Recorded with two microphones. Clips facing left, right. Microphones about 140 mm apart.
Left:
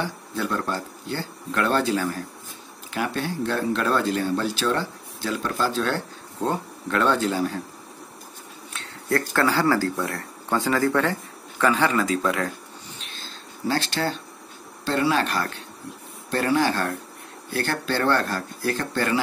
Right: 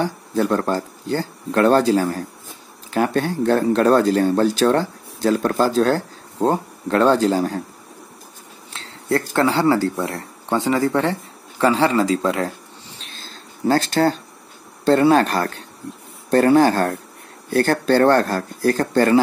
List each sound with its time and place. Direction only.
0.0 s speech: 40° right (ahead or behind)
8.7 s speech: 25° right (ahead or behind)
13.0 s a sound: 40° right (ahead or behind)
14.9 s speech: 45° right (ahead or behind)